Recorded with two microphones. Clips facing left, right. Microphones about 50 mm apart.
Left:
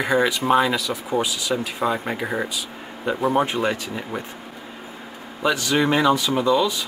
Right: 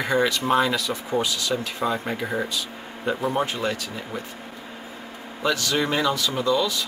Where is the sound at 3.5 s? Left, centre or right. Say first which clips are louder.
Left 4 dB; centre.